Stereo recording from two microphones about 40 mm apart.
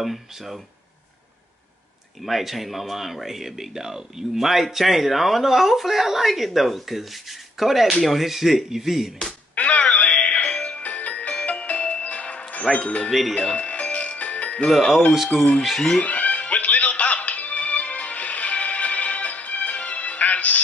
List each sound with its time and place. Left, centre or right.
0.0 s speech: centre
2.2 s speech: centre
9.6 s music: left
12.6 s speech: centre
13.3 s music: left
15.2 s speech: left
16.0 s music: left